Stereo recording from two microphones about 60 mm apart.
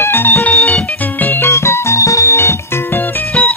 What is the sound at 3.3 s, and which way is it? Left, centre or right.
Music, left.